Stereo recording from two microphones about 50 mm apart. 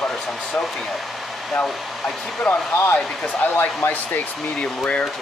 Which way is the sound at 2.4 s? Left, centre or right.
Left.